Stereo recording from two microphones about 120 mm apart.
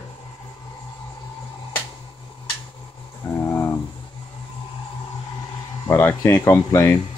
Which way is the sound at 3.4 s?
20° left (ahead or behind).